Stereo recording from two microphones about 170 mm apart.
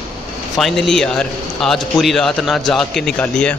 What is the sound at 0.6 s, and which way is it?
A man's voice, centre (ahead or behind).